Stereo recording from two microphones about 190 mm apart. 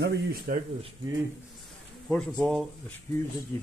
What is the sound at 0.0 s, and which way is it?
Speech, 55° right (ahead or behind).